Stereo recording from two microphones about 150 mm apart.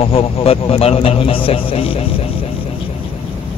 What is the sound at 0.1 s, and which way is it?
A man's voice, 40° left (ahead or behind).